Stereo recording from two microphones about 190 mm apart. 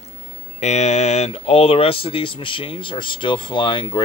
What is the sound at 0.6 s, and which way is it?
Speech, 35° left (ahead or behind).